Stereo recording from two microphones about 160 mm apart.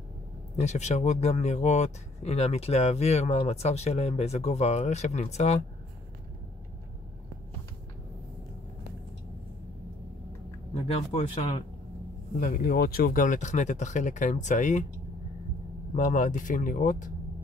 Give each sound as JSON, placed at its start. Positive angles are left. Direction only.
{"t": 0.6, "sound": "speech", "side_deg": 45}
{"t": 10.7, "sound": "speech", "side_deg": 40}
{"t": 12.4, "sound": "speech", "side_deg": 60}
{"t": 15.9, "sound": "speech", "side_deg": 50}